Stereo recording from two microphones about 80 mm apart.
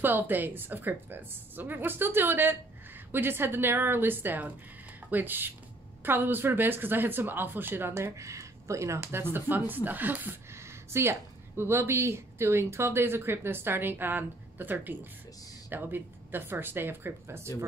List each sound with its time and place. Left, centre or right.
0.0 s speech: right